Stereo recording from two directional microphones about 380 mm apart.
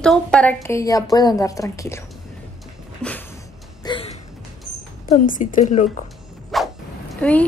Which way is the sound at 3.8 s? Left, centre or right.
Centre.